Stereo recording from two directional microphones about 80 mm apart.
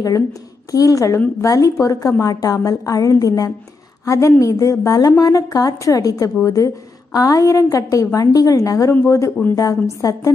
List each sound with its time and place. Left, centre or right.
0.7 s a woman's voice: left
9.6 s a woman's voice: left